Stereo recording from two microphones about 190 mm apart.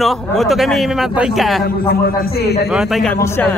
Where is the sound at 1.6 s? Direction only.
55° left (ahead or behind).